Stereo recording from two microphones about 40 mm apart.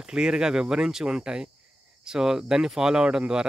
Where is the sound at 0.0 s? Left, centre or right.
Centre.